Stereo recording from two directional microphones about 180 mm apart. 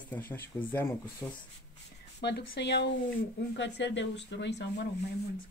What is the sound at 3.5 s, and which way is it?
Speech, 85° left.